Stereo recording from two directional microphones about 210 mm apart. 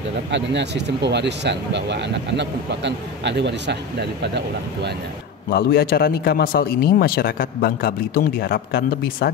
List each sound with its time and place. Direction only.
0.3 s speech: 55° right (ahead or behind)
5.5 s a man's voice: 45° left (ahead or behind)